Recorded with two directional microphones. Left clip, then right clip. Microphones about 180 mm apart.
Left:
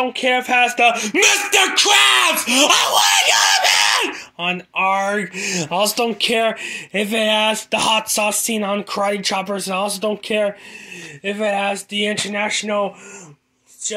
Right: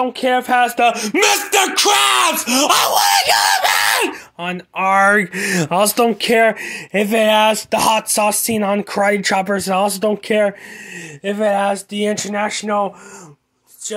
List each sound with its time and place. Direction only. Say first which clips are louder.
0.2 s speech: right 1 dB; 25° right (ahead or behind)
3.5 s a sound: even; 90° right
4.9 s speech: right 7 dB; 50° right (ahead or behind); by 8.8 s 25° right (ahead or behind)
8.8 s speech: right 4 dB; 40° right (ahead or behind)
12.4 s speech: right 2 dB; 20° right (ahead or behind)